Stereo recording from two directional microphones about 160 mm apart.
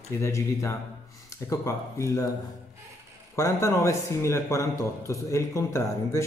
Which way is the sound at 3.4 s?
20° left (ahead or behind).